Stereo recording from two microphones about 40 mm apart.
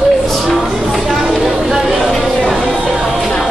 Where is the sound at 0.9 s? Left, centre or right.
Centre.